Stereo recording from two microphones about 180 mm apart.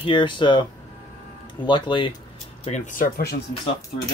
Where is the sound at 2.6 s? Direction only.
40° left (ahead or behind).